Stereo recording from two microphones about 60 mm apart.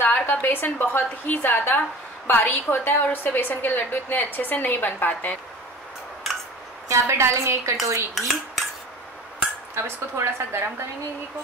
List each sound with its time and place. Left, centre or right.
0.0 s a woman's voice: left
6.9 s a woman's voice: right
8.2 s cutlery: centre
9.8 s a woman's voice: right